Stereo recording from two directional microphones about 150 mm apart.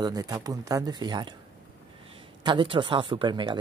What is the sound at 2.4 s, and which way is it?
Speech, 30° right (ahead or behind).